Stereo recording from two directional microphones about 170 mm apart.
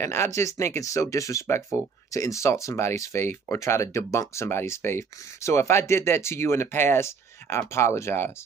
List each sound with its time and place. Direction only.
0.0 s speech: 15° left (ahead or behind)